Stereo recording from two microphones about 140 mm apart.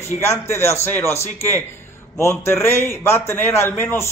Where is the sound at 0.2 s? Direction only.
20° left (ahead or behind).